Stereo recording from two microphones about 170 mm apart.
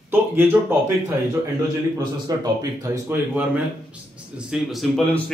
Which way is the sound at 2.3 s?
20° right (ahead or behind).